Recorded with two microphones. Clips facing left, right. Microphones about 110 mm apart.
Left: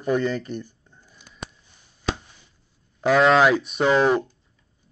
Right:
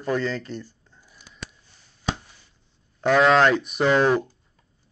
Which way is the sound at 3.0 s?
Centre (ahead or behind).